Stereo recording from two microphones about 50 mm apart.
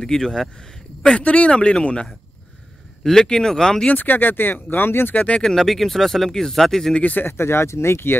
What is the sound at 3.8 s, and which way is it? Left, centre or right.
Speech, left.